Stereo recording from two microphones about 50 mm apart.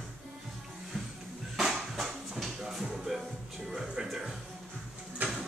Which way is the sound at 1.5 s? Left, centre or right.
Centre.